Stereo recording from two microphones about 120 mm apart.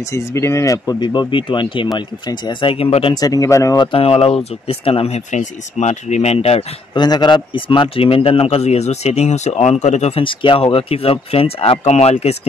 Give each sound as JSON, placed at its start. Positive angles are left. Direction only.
{"t": 0.1, "sound": "speech", "side_deg": 25}
{"t": 0.9, "sound": "speech", "side_deg": 40}
{"t": 3.2, "sound": "speech", "side_deg": 30}
{"t": 3.7, "sound": "speech", "side_deg": 35}
{"t": 4.0, "sound": "a man's voice", "side_deg": 55}
{"t": 6.9, "sound": "a man's voice", "side_deg": 35}
{"t": 10.2, "sound": "speech", "side_deg": 45}